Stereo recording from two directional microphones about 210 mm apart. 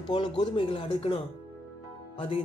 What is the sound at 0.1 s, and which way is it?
Speech, 25° left (ahead or behind).